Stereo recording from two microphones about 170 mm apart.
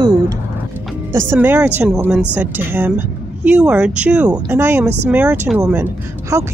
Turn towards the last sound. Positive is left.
turn(degrees=-15)  # may be behind; listen again after turning